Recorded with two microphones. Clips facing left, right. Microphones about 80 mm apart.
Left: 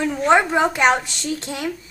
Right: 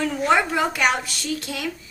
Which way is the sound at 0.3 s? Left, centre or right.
Left.